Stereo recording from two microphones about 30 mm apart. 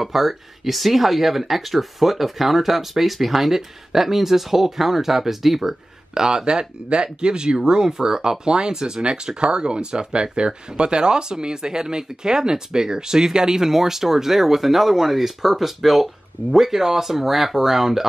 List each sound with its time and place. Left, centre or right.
0.0 s speech: centre
6.1 s speech: right